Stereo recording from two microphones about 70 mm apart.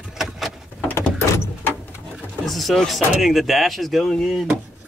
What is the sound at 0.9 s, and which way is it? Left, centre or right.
Vehicle, left.